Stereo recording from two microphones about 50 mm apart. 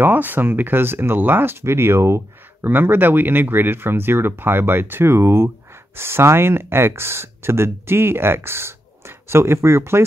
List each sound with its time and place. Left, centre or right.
0.0 s speech: right
2.6 s speech: right